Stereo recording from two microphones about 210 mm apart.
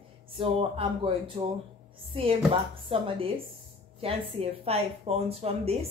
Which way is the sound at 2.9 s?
25° right (ahead or behind).